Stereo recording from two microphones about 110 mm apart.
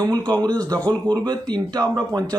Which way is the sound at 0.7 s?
15° left (ahead or behind).